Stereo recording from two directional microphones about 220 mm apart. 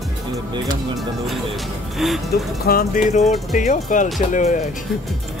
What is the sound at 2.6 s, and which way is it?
Speech, 45° left (ahead or behind).